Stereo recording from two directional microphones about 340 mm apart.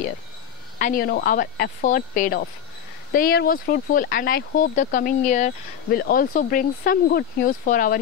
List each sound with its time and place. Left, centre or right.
0.7 s speech: left